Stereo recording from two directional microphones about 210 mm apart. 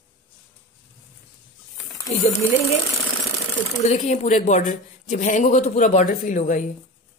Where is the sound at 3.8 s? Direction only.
30° left (ahead or behind).